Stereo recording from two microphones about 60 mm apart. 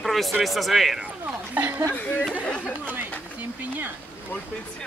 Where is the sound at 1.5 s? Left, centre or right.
Right.